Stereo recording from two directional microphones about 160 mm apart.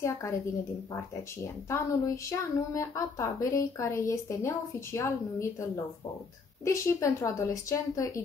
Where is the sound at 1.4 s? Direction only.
20° left (ahead or behind).